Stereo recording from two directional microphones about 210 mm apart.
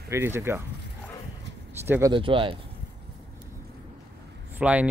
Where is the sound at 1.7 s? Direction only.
10° right (ahead or behind).